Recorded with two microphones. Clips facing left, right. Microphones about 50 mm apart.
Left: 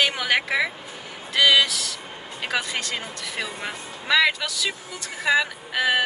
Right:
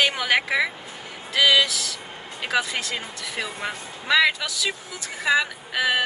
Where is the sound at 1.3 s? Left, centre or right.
Centre.